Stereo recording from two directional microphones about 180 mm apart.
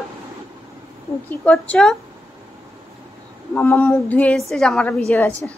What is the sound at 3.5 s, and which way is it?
A woman's voice, 15° left (ahead or behind).